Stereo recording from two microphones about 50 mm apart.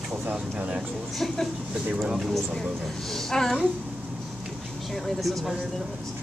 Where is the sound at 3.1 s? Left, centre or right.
Centre.